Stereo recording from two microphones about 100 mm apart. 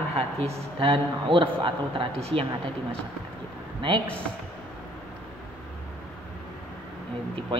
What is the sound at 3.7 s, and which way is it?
Speech, 50° right (ahead or behind).